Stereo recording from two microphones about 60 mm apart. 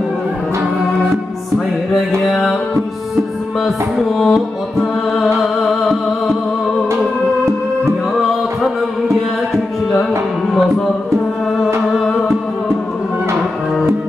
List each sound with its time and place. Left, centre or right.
2.2 s music: centre